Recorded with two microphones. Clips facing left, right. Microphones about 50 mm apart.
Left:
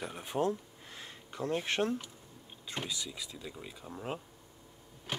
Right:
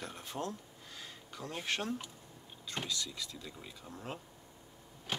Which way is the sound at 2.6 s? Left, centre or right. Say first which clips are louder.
Even; centre.